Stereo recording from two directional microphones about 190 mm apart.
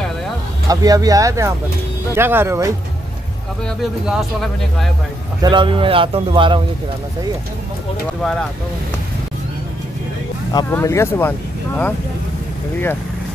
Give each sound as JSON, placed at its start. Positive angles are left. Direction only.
{"t": 0.7, "sound": "speech", "side_deg": -20}
{"t": 3.6, "sound": "speech", "side_deg": 0}
{"t": 5.4, "sound": "speech", "side_deg": -25}
{"t": 8.2, "sound": "speech", "side_deg": 0}
{"t": 10.5, "sound": "speech", "side_deg": 15}